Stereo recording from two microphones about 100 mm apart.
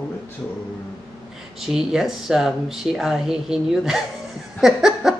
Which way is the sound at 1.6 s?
5° right (ahead or behind).